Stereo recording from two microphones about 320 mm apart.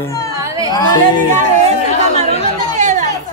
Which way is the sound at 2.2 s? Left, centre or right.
Right.